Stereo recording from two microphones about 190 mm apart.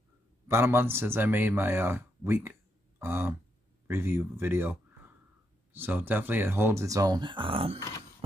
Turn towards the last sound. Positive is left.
turn(degrees=-30)  # may be behind; listen again after turning